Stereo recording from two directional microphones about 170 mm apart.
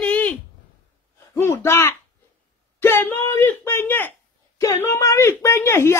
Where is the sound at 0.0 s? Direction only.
10° left (ahead or behind).